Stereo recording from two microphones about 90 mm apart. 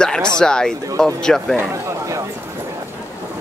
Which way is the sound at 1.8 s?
35° right (ahead or behind).